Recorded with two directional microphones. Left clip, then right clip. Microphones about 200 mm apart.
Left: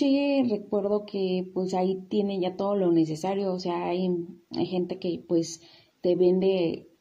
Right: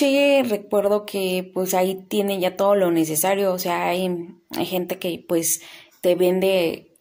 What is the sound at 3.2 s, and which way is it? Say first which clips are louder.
A woman's voice: right 8 dB; 50° right (ahead or behind).